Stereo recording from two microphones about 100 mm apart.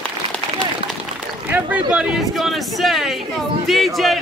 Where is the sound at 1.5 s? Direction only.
15° right (ahead or behind).